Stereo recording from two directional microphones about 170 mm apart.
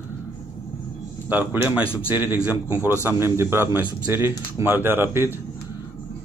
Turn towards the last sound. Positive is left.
turn(degrees=-15)  # may be behind; listen again after turning